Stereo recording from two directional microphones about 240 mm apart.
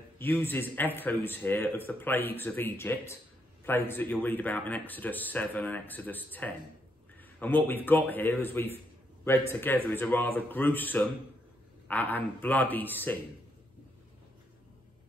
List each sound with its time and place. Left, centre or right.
0.2 s speech: centre